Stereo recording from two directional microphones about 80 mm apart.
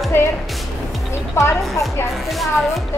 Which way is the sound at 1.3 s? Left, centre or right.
Left.